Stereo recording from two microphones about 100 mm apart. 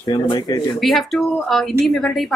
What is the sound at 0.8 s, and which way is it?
A woman's voice, centre (ahead or behind).